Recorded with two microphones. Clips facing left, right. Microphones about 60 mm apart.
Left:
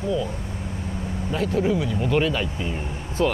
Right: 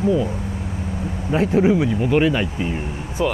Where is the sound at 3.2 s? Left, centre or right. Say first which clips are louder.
Right 1 dB; centre.